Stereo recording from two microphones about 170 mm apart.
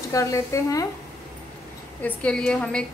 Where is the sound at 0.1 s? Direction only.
20° left (ahead or behind).